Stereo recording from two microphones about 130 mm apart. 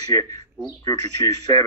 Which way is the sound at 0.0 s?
25° left (ahead or behind).